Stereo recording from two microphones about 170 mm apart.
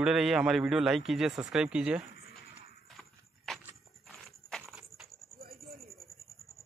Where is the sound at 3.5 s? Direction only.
Centre (ahead or behind).